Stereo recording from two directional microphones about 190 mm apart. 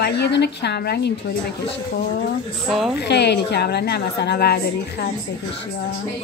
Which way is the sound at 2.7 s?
Centre (ahead or behind).